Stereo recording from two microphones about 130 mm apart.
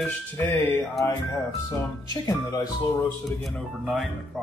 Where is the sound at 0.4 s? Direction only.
15° left (ahead or behind).